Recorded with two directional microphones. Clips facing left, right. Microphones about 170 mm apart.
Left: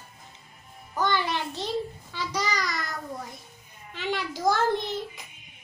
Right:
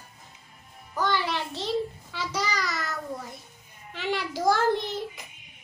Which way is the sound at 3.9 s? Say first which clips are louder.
Right 1 dB; 5° right (ahead or behind).